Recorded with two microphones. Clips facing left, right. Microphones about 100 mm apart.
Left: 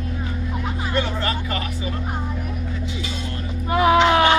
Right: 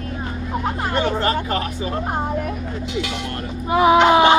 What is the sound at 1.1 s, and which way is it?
Speech, 35° right (ahead or behind).